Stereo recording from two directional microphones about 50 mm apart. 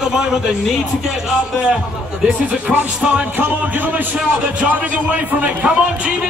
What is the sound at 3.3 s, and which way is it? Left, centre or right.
A man's voice, right.